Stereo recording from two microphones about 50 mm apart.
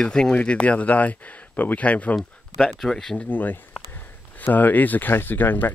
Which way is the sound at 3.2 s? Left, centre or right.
Left.